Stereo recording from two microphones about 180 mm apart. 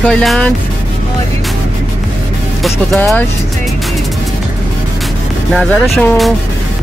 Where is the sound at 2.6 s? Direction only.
Centre (ahead or behind).